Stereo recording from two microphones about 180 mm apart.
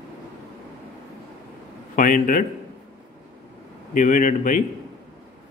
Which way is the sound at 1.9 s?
45° left (ahead or behind).